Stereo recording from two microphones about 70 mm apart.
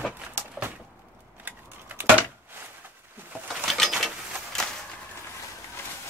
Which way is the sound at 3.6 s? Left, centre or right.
Centre.